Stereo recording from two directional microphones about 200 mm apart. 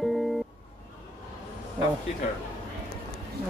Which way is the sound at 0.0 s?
Centre (ahead or behind).